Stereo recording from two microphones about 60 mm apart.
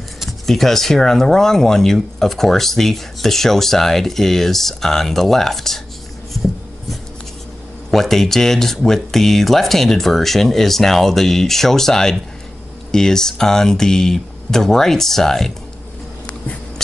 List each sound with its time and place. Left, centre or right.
0.2 s speech: centre
7.9 s speech: centre